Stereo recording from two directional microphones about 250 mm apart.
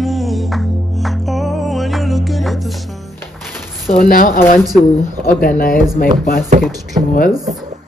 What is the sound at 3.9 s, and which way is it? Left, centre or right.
Speech, left.